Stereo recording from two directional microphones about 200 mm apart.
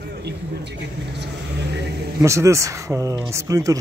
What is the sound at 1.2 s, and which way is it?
Speech, 60° right (ahead or behind).